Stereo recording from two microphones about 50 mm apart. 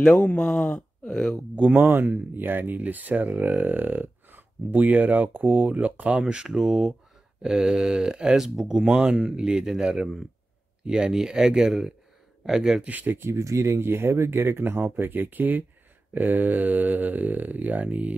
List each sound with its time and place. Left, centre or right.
0.0 s speech: left
1.5 s speech: right
1.8 s speech: right
6.2 s speech: centre
12.8 s speech: right
13.2 s speech: right
14.4 s speech: right